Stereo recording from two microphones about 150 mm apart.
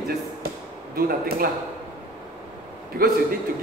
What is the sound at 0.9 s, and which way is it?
Speech, 90° right.